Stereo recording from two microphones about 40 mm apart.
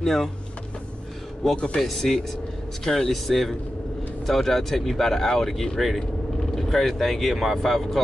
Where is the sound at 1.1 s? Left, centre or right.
Centre.